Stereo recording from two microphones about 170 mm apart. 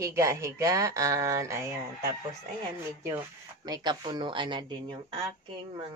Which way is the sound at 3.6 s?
25° right (ahead or behind).